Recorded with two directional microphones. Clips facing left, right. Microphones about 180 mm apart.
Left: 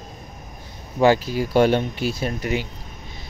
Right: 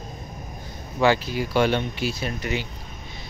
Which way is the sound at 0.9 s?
40° left (ahead or behind).